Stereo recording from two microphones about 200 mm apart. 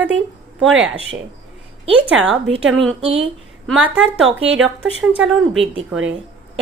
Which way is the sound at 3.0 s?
30° right (ahead or behind).